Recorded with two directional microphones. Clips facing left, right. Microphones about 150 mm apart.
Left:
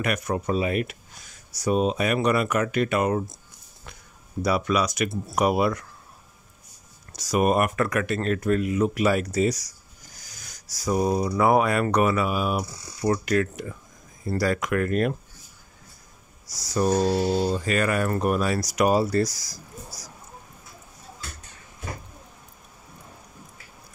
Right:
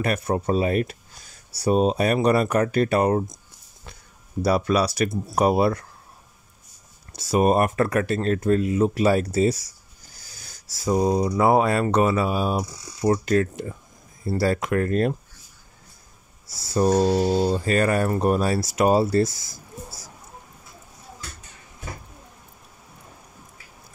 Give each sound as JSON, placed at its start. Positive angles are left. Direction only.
{"t": 0.0, "sound": "speech", "side_deg": -30}
{"t": 4.4, "sound": "speech", "side_deg": -35}
{"t": 7.1, "sound": "speech", "side_deg": -25}
{"t": 16.4, "sound": "speech", "side_deg": -25}
{"t": 17.5, "sound": "speech", "side_deg": -35}